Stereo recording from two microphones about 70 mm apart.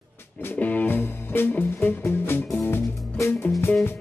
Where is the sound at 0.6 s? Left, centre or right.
Left.